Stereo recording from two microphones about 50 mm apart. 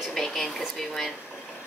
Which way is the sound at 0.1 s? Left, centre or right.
Centre.